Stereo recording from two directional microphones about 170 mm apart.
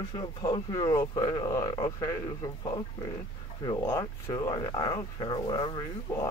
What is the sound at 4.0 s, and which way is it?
Speech, 25° left (ahead or behind).